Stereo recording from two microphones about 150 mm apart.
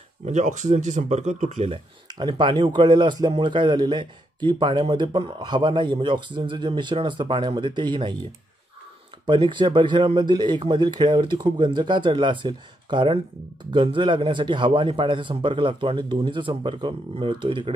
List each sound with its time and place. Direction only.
0.2 s speech: 55° right (ahead or behind)
2.1 s a man's voice: 30° right (ahead or behind)
9.2 s a man's voice: 30° right (ahead or behind)